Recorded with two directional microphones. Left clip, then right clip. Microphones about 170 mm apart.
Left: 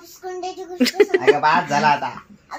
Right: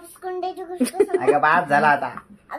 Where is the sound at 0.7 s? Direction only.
Centre (ahead or behind).